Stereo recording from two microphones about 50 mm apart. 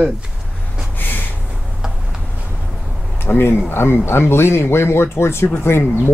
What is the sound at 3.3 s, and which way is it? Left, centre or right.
Speech, left.